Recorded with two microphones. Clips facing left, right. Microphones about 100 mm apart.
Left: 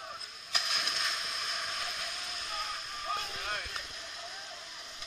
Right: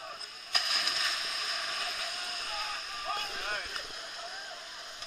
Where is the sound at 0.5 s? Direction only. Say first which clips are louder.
Right 1 dB; 5° right (ahead or behind).